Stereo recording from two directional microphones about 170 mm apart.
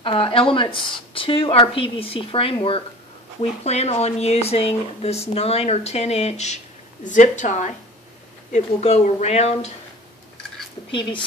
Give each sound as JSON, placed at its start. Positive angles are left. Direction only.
{"t": 0.0, "sound": "a woman's voice", "side_deg": 35}